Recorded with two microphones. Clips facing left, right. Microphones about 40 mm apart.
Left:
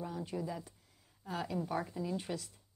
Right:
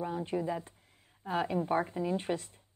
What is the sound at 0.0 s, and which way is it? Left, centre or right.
A woman's voice, right.